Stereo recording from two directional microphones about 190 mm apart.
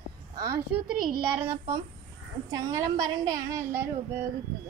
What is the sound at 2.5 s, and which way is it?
A woman's voice, 15° right (ahead or behind).